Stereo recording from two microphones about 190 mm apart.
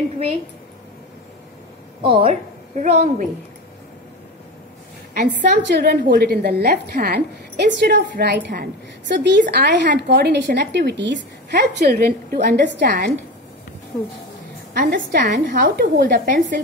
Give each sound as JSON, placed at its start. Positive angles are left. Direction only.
{"t": 2.0, "sound": "speech", "side_deg": -25}
{"t": 2.7, "sound": "a woman's voice", "side_deg": -40}
{"t": 5.5, "sound": "a woman's voice", "side_deg": -60}
{"t": 14.8, "sound": "a woman's voice", "side_deg": -45}